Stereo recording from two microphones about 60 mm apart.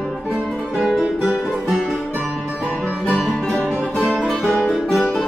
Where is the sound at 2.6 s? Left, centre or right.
Left.